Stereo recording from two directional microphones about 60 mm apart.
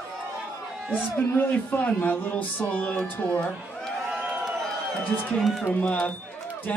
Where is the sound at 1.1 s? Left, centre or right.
Left.